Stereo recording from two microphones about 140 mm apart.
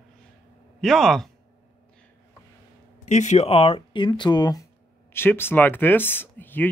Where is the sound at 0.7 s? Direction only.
Centre (ahead or behind).